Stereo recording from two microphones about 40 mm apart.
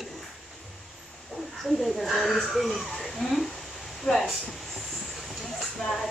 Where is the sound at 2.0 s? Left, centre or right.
Centre.